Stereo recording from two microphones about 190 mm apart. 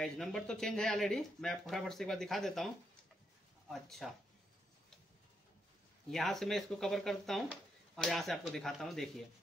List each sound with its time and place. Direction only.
0.0 s speech: 5° left (ahead or behind)
6.1 s speech: centre (ahead or behind)